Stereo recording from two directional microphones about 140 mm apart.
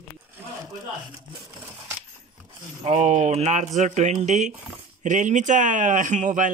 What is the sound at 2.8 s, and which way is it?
Speech, 55° right (ahead or behind).